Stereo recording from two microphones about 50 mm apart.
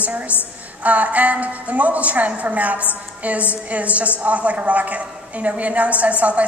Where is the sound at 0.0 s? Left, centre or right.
Right.